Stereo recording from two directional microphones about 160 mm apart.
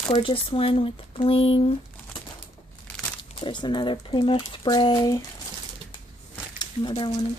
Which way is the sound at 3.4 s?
30° left (ahead or behind).